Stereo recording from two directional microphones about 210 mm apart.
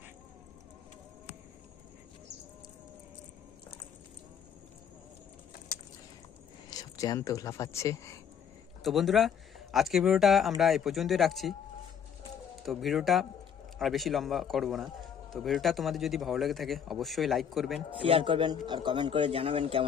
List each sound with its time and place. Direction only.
6.7 s speech: 15° left (ahead or behind)
8.8 s a man's voice: centre (ahead or behind)
12.6 s a man's voice: centre (ahead or behind)
18.0 s speech: 25° right (ahead or behind)